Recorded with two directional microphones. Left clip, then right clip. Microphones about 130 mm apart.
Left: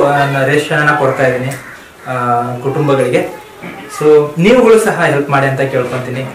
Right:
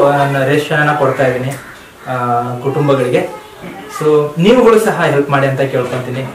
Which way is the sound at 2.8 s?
5° left (ahead or behind).